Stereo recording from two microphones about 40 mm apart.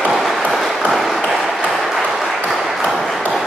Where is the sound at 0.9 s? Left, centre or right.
Centre.